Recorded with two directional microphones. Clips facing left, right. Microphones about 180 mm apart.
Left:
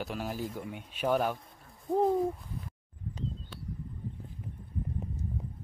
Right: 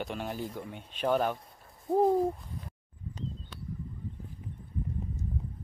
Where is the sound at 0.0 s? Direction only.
Centre (ahead or behind).